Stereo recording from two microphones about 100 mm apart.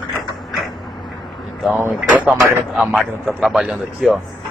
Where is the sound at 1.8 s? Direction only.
15° right (ahead or behind).